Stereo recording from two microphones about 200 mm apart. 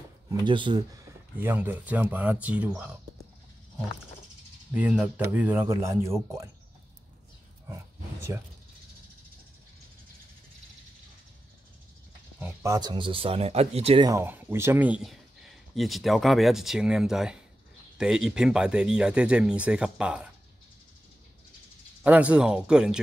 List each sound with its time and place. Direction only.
0.5 s speech: 25° right (ahead or behind)
1.4 s speech: 10° right (ahead or behind)
4.7 s speech: 5° right (ahead or behind)
7.6 s a sound: 15° right (ahead or behind)
12.4 s speech: 10° right (ahead or behind); by 14.0 s 30° right (ahead or behind)
14.0 s speech: 10° right (ahead or behind)
22.0 s speech: 5° right (ahead or behind)